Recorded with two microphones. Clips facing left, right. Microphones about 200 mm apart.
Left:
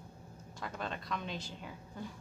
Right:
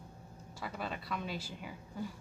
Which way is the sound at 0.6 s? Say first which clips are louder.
Even; 5° right (ahead or behind).